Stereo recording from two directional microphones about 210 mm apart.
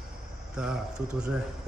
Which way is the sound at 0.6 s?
5° right (ahead or behind).